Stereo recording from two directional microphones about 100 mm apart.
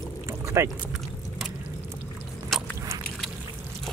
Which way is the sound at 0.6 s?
30° right (ahead or behind).